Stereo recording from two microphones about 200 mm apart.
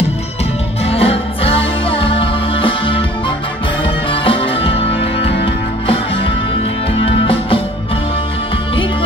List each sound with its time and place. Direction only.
0.8 s music: 30° left (ahead or behind)
7.1 s music: 25° left (ahead or behind)